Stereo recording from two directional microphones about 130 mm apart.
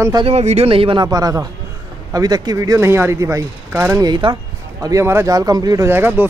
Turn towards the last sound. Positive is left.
turn(degrees=-15)  # may be behind; listen again after turning